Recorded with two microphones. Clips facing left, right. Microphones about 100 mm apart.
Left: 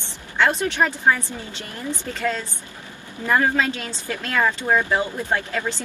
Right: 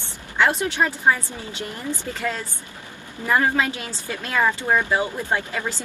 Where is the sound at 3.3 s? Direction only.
15° right (ahead or behind).